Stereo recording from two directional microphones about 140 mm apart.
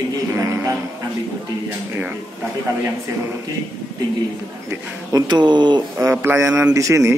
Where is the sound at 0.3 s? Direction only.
20° right (ahead or behind).